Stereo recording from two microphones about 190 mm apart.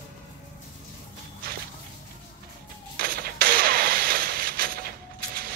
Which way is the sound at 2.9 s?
50° right (ahead or behind).